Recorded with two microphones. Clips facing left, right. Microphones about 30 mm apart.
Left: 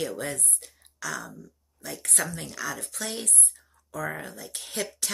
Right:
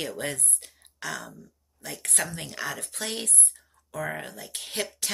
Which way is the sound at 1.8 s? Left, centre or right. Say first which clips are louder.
Left 1 dB; right.